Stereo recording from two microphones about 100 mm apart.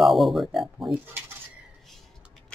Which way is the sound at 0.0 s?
Centre (ahead or behind).